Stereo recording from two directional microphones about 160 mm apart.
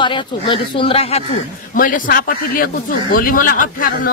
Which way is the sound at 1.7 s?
60° left (ahead or behind).